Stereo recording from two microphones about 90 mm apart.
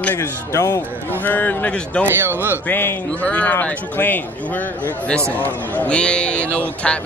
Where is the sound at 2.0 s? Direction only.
25° right (ahead or behind).